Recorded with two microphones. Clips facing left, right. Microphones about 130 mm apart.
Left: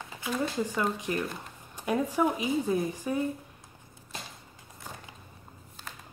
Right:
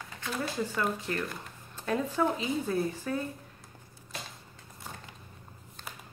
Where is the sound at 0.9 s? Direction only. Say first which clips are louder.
Left 2 dB; 15° left (ahead or behind).